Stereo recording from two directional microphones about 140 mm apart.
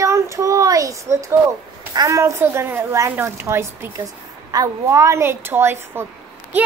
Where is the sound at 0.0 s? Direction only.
20° right (ahead or behind).